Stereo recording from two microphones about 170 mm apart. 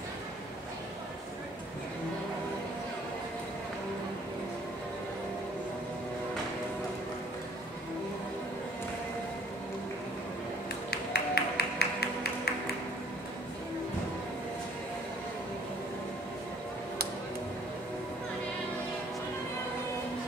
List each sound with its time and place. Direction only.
10.9 s music: 70° left (ahead or behind)